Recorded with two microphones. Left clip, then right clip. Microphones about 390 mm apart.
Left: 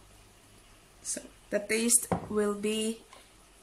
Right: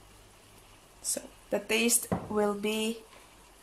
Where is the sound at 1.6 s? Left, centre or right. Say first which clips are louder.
Right 4 dB; centre.